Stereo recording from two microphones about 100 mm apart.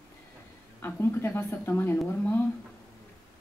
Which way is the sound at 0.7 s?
25° left (ahead or behind).